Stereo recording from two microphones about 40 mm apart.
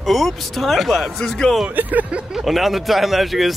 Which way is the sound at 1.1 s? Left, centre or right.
Centre.